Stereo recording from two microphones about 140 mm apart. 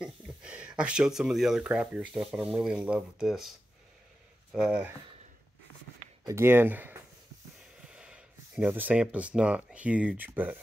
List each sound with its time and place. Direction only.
0.0 s speech: 5° right (ahead or behind)
6.2 s speech: 20° right (ahead or behind)